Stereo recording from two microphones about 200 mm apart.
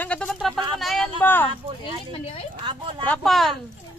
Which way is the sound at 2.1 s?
30° left (ahead or behind).